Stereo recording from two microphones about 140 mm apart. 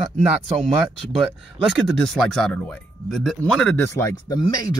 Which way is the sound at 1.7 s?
Centre (ahead or behind).